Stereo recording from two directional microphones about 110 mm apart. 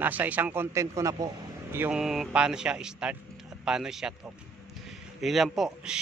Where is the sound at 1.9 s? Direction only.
5° right (ahead or behind).